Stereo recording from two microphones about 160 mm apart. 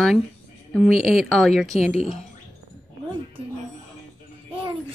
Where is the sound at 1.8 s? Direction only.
45° left (ahead or behind).